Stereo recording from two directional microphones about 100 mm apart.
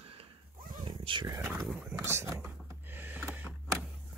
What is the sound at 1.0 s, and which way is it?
Dog, 55° right (ahead or behind).